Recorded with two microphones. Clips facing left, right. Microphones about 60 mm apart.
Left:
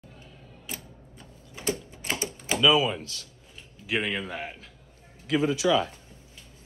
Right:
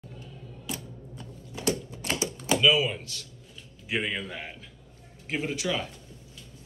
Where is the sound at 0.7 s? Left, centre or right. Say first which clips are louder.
Right 4 dB; left.